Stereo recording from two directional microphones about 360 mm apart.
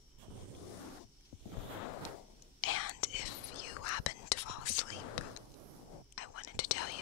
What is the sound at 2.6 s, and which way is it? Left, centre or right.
Whispering, left.